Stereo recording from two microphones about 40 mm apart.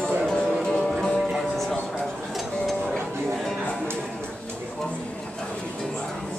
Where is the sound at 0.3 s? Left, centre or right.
Centre.